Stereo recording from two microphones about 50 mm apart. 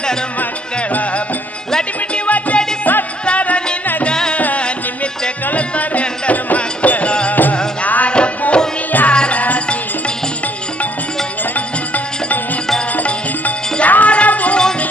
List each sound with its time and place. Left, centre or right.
1.7 s music: centre
2.2 s music: left
3.3 s music: left
4.4 s music: left
11.5 s music: left
13.7 s music: left